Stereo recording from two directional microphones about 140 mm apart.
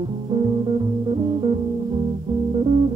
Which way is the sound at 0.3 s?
35° right (ahead or behind).